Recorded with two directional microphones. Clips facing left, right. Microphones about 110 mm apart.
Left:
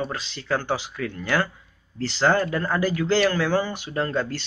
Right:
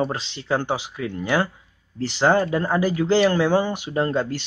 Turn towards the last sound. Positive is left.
turn(degrees=-20)  # may be behind; listen again after turning